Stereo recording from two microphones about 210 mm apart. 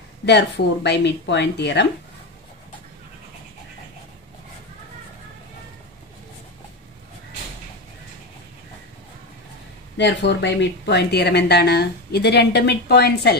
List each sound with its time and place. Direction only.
0.2 s speech: 55° left (ahead or behind)
9.9 s speech: 55° left (ahead or behind)